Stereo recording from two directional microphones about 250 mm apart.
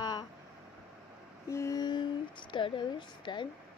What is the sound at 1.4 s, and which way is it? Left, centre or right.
Speech, centre.